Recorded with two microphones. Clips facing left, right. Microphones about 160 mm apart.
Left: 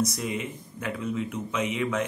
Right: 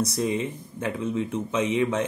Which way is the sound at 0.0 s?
30° right (ahead or behind).